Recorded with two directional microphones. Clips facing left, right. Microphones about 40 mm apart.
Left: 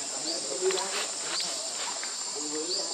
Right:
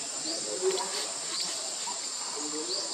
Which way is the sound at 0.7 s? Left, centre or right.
Left.